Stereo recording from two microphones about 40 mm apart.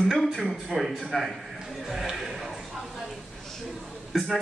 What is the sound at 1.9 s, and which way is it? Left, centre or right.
Horse, centre.